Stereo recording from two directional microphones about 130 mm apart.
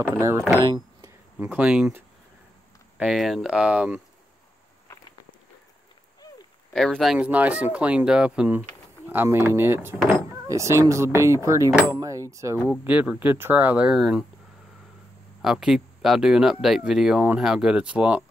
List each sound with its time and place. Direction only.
0.0 s speech: 20° right (ahead or behind)
1.4 s speech: 10° right (ahead or behind)
3.0 s speech: centre (ahead or behind)
6.7 s speech: 5° left (ahead or behind)
7.2 s speech: 10° right (ahead or behind)
15.4 s speech: 5° right (ahead or behind)